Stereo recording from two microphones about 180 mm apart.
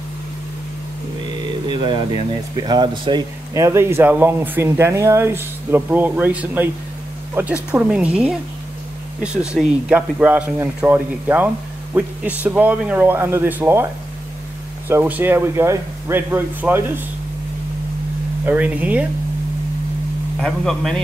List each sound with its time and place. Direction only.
1.7 s speech: 25° right (ahead or behind)
14.9 s speech: 10° right (ahead or behind)
18.4 s speech: 10° right (ahead or behind)
20.3 s speech: 5° left (ahead or behind)